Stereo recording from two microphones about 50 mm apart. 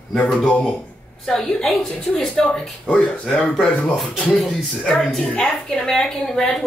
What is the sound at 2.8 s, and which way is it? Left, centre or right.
Speech, left.